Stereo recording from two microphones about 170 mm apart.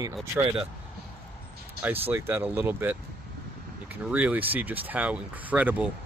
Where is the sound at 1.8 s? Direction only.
10° right (ahead or behind).